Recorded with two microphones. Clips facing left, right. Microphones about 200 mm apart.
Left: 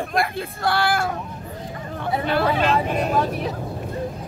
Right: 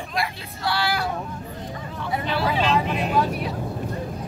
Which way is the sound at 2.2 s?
55° left (ahead or behind).